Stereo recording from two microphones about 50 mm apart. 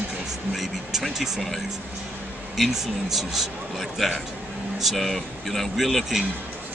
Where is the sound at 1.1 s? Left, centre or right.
Centre.